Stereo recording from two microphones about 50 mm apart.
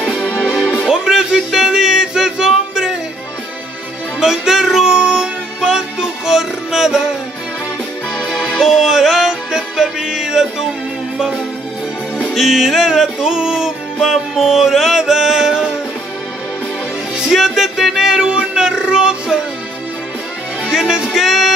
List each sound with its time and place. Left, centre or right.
0.4 s music: centre
0.8 s a sound: centre
4.2 s music: centre
8.3 s music: centre
12.4 s music: centre
17.2 s music: centre
20.6 s music: centre